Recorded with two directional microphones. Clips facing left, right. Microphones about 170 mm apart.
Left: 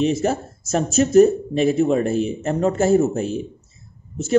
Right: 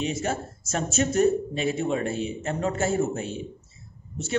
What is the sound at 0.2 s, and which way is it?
Speech, 35° left (ahead or behind).